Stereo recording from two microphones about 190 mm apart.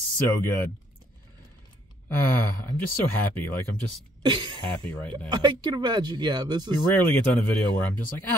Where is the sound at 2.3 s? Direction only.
10° left (ahead or behind).